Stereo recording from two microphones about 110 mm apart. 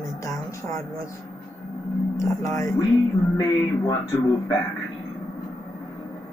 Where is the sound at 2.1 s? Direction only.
30° left (ahead or behind).